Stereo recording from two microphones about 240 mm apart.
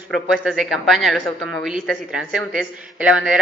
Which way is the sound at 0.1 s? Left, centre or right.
Centre.